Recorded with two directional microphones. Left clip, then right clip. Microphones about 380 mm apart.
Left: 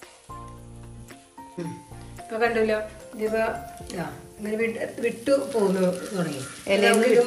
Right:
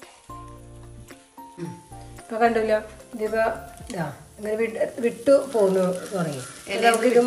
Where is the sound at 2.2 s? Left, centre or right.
Right.